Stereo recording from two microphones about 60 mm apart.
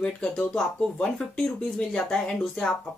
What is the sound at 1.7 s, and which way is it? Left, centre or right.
Speech, centre.